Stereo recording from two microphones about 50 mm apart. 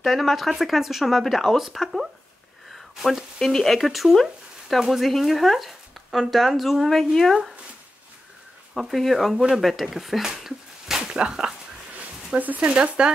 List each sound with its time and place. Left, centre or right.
0.0 s speech: centre
3.3 s speech: centre
8.7 s speech: centre
12.0 s a sound: right
12.7 s speech: centre